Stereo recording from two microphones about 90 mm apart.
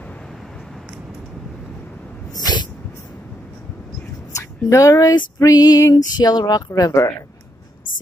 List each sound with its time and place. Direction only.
2.3 s dog: 50° left (ahead or behind)
4.4 s speech: 35° left (ahead or behind)
5.4 s music: 45° left (ahead or behind)
6.1 s speech: 50° left (ahead or behind); by 7.2 s 35° left (ahead or behind)